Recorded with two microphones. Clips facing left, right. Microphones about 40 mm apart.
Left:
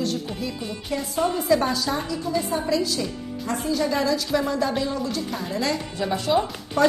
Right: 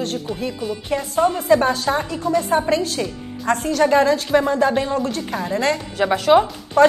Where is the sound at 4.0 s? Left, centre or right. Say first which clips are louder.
Right 7 dB; right.